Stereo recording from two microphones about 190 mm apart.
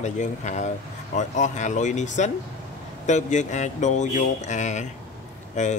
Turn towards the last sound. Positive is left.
turn(degrees=40)  # may be behind; listen again after turning